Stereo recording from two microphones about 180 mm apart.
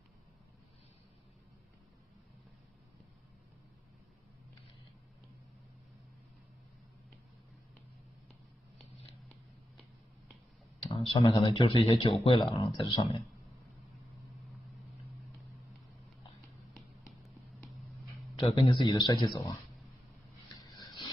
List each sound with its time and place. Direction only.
10.9 s speech: 25° left (ahead or behind)
18.3 s a sound: 20° left (ahead or behind)
18.6 s speech: 25° left (ahead or behind)
20.5 s rub: 25° left (ahead or behind)